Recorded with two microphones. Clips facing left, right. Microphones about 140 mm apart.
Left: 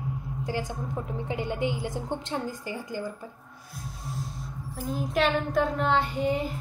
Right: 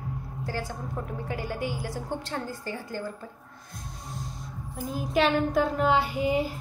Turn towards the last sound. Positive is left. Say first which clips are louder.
# right 1 dB
turn(degrees=-5)  # may be behind; listen again after turning